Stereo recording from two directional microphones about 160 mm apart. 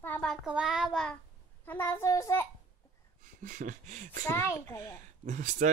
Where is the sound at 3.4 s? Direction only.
55° right (ahead or behind).